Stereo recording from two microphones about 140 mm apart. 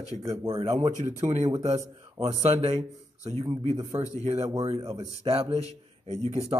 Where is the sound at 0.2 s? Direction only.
20° right (ahead or behind).